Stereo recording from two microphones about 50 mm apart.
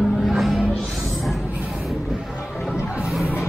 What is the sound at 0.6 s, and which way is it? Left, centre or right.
Music, left.